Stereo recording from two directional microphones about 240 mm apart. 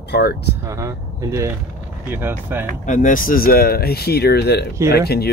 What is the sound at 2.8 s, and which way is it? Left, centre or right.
Speech, left.